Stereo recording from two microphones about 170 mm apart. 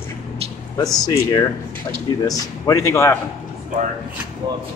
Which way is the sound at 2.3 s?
20° left (ahead or behind).